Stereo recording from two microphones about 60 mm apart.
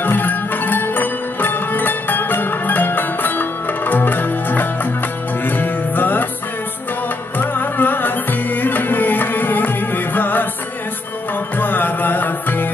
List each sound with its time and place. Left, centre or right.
0.0 s music: left
7.3 s music: left
11.5 s music: left